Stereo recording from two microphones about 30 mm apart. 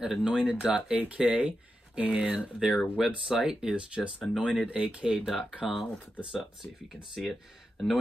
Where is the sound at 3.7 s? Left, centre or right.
Right.